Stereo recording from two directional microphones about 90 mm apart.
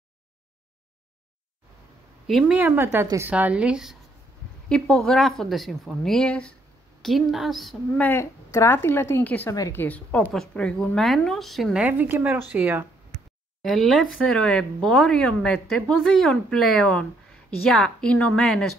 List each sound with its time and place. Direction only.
2.2 s speech: centre (ahead or behind)
2.5 s a woman's voice: 20° right (ahead or behind)
4.6 s speech: 5° left (ahead or behind)
7.0 s speech: centre (ahead or behind)
8.0 s a woman's voice: 25° left (ahead or behind); by 11.7 s centre (ahead or behind)
11.7 s a woman's voice: 15° right (ahead or behind)
13.6 s a woman's voice: centre (ahead or behind)